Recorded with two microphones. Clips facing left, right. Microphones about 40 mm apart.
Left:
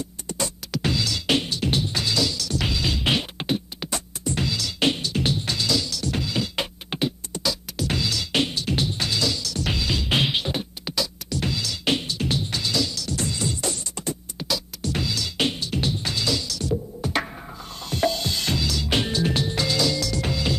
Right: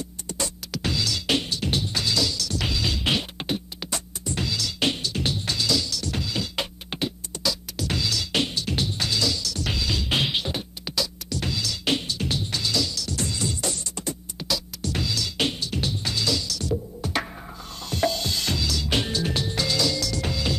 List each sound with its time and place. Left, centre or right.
0.3 s music: left